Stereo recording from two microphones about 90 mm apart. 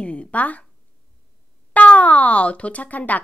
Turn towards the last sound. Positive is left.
turn(degrees=15)  # may be behind; listen again after turning